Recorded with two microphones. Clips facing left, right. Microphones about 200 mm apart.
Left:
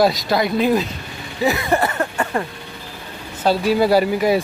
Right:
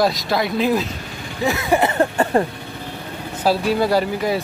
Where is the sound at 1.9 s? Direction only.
30° right (ahead or behind).